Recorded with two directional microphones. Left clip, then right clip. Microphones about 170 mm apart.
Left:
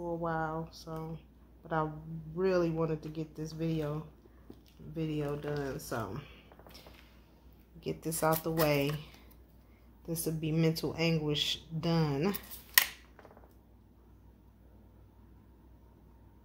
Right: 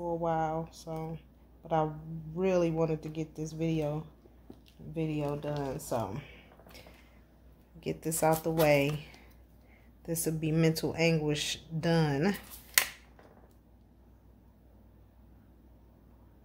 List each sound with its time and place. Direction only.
0.0 s speech: 30° right (ahead or behind)
2.3 s speech: 35° right (ahead or behind)
7.8 s speech: 40° right (ahead or behind)
10.0 s speech: 40° right (ahead or behind)